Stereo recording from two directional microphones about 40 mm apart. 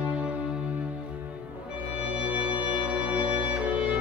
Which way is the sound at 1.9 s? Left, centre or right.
Right.